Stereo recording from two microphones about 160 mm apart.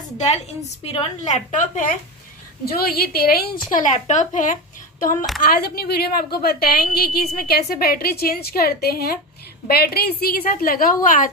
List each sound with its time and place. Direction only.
0.8 s a woman's voice: 50° left (ahead or behind)
2.6 s a woman's voice: 75° left (ahead or behind)
3.7 s a woman's voice: 50° left (ahead or behind)
5.4 s a woman's voice: 70° left (ahead or behind)